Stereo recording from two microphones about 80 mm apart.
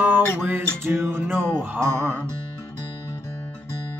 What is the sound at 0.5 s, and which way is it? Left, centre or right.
Music, right.